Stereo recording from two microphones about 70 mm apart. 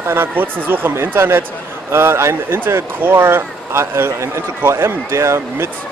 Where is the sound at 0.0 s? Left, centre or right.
Right.